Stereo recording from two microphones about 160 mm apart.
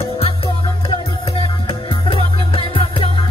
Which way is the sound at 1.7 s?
35° left (ahead or behind).